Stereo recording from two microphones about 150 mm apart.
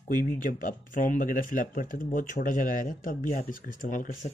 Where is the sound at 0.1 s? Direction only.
60° left (ahead or behind).